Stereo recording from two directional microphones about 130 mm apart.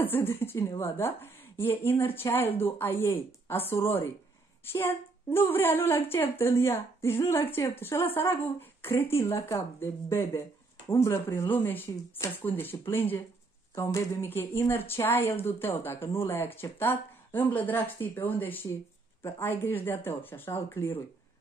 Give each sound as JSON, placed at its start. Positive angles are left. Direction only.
{"t": 0.0, "sound": "a woman's voice", "side_deg": 15}